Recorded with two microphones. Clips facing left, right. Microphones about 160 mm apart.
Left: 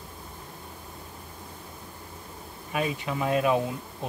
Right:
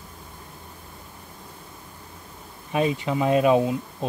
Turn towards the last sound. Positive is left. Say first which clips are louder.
# right 6 dB
turn(degrees=-20)  # may be behind; listen again after turning